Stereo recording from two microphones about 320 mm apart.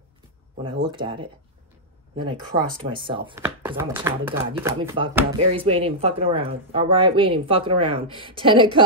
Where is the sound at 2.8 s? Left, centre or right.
Centre.